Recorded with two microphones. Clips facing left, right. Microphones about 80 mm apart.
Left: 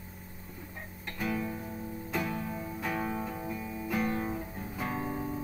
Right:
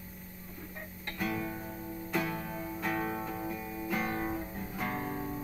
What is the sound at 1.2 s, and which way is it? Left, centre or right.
Guitar, centre.